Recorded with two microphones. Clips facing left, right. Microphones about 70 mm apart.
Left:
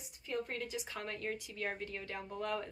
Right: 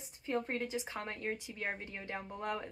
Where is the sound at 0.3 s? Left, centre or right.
Right.